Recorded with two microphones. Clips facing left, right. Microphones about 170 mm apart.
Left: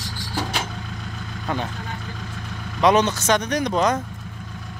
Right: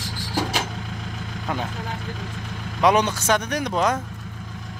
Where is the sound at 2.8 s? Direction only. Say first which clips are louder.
Left 1 dB; 10° right (ahead or behind).